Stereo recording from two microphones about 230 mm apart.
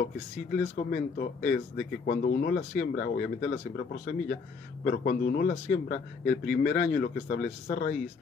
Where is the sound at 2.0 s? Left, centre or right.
Left.